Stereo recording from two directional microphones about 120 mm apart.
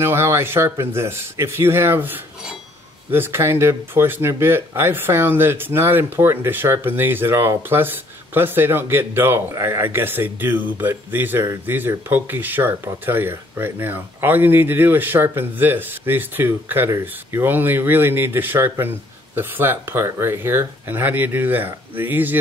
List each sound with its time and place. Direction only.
0.0 s speech: 20° right (ahead or behind)